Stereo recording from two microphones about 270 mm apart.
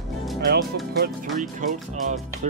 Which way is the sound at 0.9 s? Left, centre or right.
Right.